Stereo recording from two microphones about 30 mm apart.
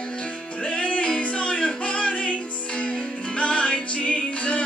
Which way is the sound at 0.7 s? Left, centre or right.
Left.